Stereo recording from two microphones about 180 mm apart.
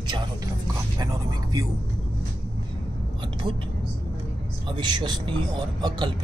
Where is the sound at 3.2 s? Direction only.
25° right (ahead or behind).